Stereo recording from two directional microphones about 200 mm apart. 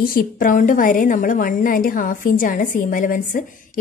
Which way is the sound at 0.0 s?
45° left (ahead or behind).